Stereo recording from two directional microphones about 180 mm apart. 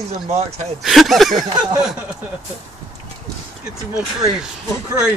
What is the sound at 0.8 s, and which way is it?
Speech, centre (ahead or behind).